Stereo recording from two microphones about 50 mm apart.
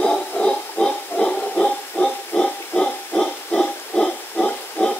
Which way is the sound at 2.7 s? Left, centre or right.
Centre.